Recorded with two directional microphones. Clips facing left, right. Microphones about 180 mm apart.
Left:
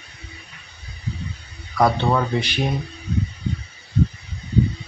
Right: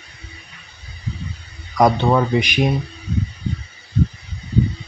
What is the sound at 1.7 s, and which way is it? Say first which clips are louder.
Speech: right 3 dB; 15° right (ahead or behind).